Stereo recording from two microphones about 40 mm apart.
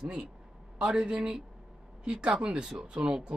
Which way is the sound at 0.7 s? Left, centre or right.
Right.